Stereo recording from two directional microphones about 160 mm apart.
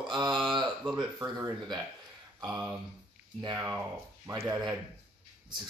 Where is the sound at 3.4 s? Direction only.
25° right (ahead or behind).